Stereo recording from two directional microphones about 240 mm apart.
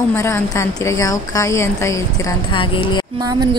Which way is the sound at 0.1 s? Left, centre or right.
Centre.